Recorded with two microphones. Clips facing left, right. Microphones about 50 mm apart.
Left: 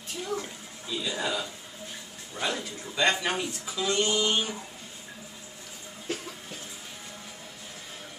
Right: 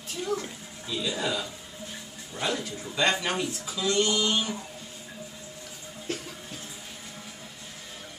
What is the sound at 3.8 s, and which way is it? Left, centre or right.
Mantra, left.